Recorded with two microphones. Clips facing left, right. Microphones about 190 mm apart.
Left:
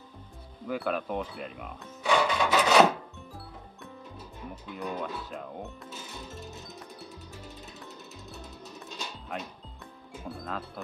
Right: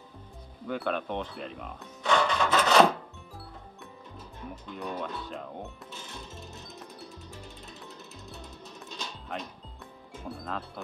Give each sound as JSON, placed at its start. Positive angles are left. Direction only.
{"t": 0.7, "sound": "music", "side_deg": 5}
{"t": 4.6, "sound": "speech", "side_deg": 5}
{"t": 7.8, "sound": "music", "side_deg": 0}